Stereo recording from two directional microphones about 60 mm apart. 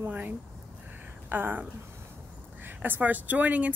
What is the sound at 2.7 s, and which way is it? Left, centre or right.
Speech, right.